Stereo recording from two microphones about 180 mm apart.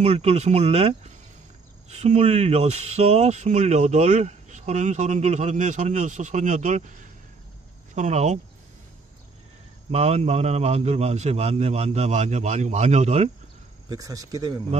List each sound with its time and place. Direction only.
0.0 s speech: 35° right (ahead or behind)
9.8 s speech: 35° right (ahead or behind)
13.8 s speech: 20° right (ahead or behind)